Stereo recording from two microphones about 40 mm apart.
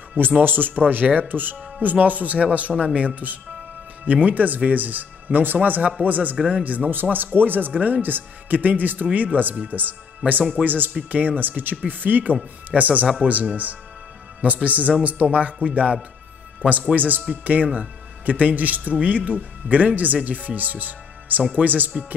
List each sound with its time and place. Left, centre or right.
0.4 s speech: right
6.9 s speech: right
14.4 s speech: right
16.6 s speech: right